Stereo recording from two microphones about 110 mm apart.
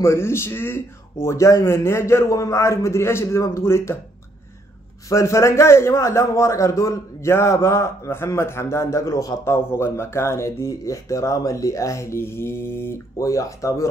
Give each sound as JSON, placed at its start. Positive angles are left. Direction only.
{"t": 0.0, "sound": "a man's voice", "side_deg": 25}
{"t": 5.1, "sound": "a man's voice", "side_deg": 25}